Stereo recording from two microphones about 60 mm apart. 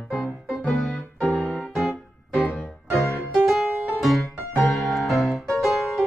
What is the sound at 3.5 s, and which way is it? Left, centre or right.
Music, centre.